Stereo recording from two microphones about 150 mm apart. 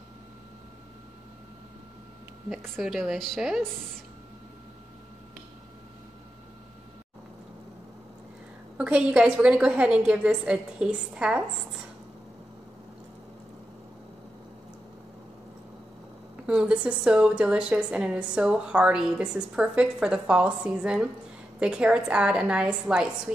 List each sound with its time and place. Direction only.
2.5 s a woman's voice: centre (ahead or behind)
8.7 s a woman's voice: 10° right (ahead or behind)
16.4 s a woman's voice: 5° right (ahead or behind)